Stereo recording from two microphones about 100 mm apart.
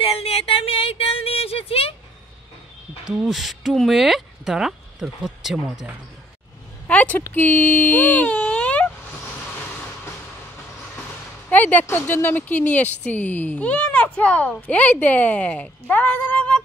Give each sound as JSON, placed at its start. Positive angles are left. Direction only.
{"t": 0.1, "sound": "a sound", "side_deg": 75}
{"t": 3.1, "sound": "speech", "side_deg": -5}
{"t": 6.9, "sound": "speech", "side_deg": 15}
{"t": 11.5, "sound": "a woman's voice", "side_deg": 15}